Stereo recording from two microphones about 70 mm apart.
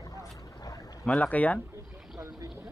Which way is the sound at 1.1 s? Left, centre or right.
Left.